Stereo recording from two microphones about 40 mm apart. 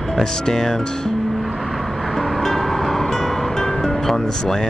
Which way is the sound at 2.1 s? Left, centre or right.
Centre.